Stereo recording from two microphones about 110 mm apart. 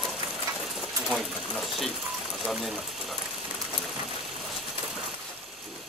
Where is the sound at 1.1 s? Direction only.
Centre (ahead or behind).